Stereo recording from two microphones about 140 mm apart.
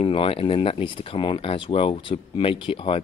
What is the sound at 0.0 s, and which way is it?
Speech, 40° left (ahead or behind).